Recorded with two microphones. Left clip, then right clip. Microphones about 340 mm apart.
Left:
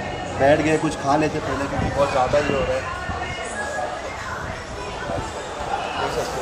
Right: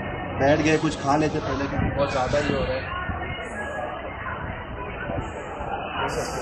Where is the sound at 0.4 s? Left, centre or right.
Centre.